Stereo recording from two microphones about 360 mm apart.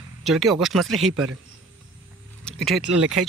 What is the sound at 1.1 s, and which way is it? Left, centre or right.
Speech, right.